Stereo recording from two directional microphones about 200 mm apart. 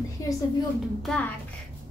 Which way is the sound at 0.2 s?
15° left (ahead or behind).